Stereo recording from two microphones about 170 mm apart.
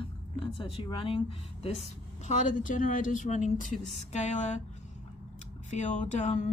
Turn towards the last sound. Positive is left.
turn(degrees=45)  # may be behind; listen again after turning